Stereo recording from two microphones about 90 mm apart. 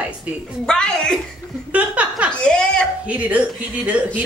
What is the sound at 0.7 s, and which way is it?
Speech, 10° left (ahead or behind).